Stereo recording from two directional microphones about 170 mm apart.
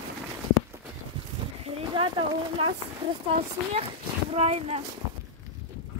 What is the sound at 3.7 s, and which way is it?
Speech, 40° right (ahead or behind).